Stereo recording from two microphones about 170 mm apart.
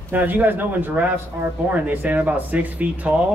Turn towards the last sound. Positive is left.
turn(degrees=-10)  # may be behind; listen again after turning